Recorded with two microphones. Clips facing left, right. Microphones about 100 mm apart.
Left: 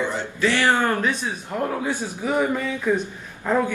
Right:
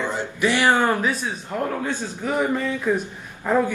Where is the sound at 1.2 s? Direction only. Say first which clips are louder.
Even; 5° left (ahead or behind).